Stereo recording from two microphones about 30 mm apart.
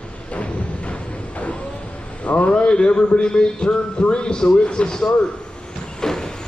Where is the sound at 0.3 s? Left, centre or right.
Left.